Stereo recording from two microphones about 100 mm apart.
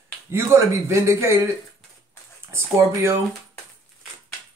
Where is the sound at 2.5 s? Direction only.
25° right (ahead or behind).